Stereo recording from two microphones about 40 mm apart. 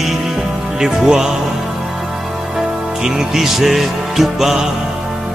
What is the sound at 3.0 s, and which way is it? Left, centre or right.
Music, centre.